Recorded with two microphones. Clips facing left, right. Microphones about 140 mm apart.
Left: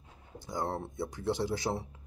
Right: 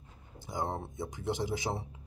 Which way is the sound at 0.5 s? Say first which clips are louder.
Left 1 dB; 15° right (ahead or behind).